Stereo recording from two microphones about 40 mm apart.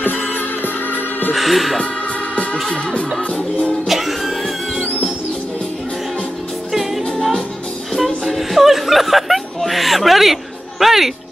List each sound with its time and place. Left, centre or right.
0.0 s music: left
1.3 s speech: centre
2.7 s music: left
3.8 s music: centre
7.9 s a sound: centre